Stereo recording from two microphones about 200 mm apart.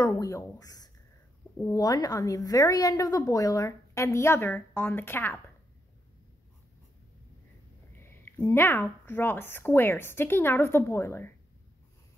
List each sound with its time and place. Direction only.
0.0 s a woman's voice: 15° left (ahead or behind)
8.0 s a woman's voice: 10° left (ahead or behind)